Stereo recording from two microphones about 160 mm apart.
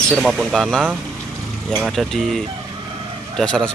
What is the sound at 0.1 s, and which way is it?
Speech, centre (ahead or behind).